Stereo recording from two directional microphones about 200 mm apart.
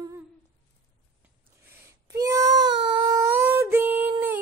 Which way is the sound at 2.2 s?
15° right (ahead or behind).